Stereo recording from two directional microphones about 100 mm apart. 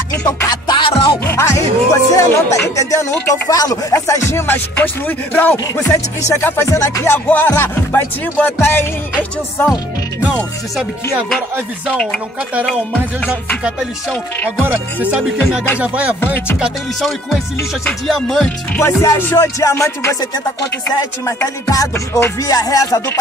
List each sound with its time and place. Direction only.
0.1 s music: 35° left (ahead or behind)
0.7 s music: 55° left (ahead or behind)
1.2 s speech: 25° left (ahead or behind)
4.7 s speech: 15° left (ahead or behind)
6.4 s speech: 25° left (ahead or behind)
15.8 s music: 15° right (ahead or behind); by 18.8 s 5° left (ahead or behind)
18.8 s speech: 25° left (ahead or behind)
21.6 s speech: 35° left (ahead or behind)